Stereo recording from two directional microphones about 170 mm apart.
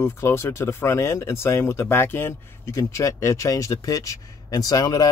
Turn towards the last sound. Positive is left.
turn(degrees=20)  # may be behind; listen again after turning